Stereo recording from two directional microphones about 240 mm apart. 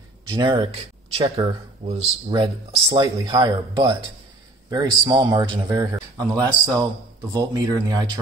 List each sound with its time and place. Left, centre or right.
0.3 s a man's voice: centre